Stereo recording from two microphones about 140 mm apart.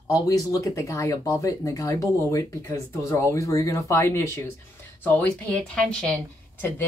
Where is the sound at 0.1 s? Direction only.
25° left (ahead or behind); by 6.1 s 5° left (ahead or behind).